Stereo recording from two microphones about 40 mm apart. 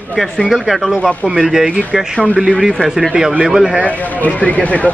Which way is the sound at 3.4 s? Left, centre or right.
Centre.